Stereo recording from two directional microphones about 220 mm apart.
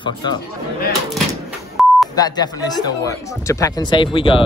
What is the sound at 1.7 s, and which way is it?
Beep, centre (ahead or behind).